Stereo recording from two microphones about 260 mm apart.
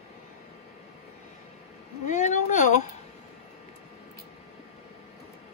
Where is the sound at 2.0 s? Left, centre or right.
Left.